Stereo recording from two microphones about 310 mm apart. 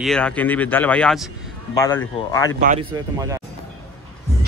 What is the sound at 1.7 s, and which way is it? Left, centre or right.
Speech, centre.